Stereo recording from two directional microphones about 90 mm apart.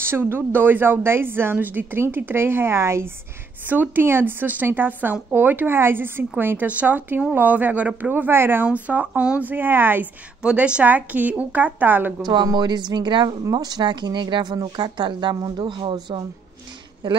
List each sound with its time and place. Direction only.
0.0 s speech: 25° right (ahead or behind)
10.4 s a woman's voice: 10° right (ahead or behind)
12.5 s speech: 55° right (ahead or behind)
13.4 s speech: 45° right (ahead or behind); by 17.2 s 60° right (ahead or behind)